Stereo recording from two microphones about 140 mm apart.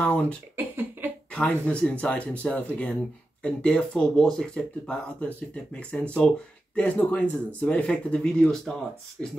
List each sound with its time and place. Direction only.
0.0 s speech: 10° left (ahead or behind)
0.6 s cough: 15° right (ahead or behind)
1.3 s speech: 10° left (ahead or behind)
9.2 s speech: 5° right (ahead or behind)